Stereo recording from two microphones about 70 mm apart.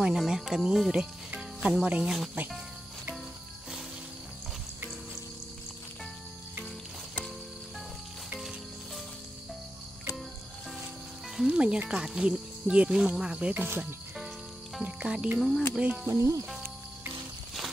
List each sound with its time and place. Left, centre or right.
0.0 s speech: centre
1.3 s snake: centre
2.0 s speech: centre
8.4 s music: centre
11.4 s speech: centre
13.7 s speech: right
14.8 s speech: centre
15.3 s speech: centre
16.1 s speech: right